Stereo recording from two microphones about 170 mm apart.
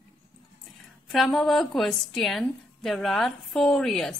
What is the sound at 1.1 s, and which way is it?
A woman's voice, centre (ahead or behind).